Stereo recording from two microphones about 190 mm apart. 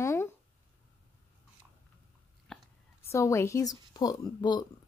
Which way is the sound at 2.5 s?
Centre (ahead or behind).